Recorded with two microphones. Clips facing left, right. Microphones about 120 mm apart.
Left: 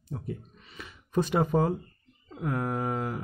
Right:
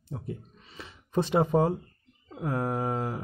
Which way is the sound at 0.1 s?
25° right (ahead or behind).